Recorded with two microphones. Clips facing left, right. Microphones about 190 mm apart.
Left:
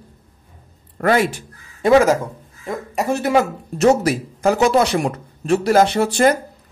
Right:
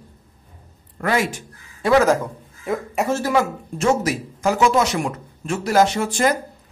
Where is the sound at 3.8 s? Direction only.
35° left (ahead or behind).